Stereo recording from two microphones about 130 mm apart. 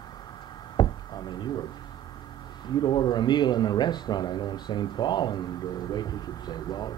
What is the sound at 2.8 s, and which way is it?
Speech, 35° left (ahead or behind).